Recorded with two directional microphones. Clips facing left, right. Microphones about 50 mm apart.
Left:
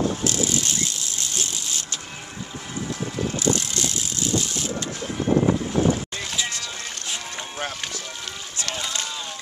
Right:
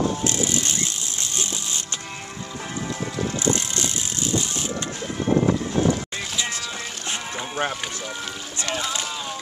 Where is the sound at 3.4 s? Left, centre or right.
Right.